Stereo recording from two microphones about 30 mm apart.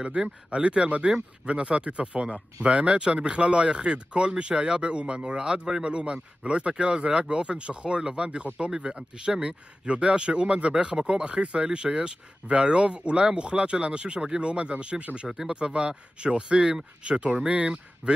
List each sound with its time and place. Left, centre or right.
0.6 s speech: right
2.7 s speech: right
10.7 s speech: right